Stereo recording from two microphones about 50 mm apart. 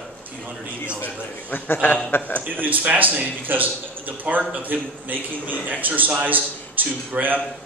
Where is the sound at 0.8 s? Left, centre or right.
Left.